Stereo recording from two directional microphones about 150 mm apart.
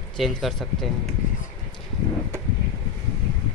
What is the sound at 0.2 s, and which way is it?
Speech, centre (ahead or behind).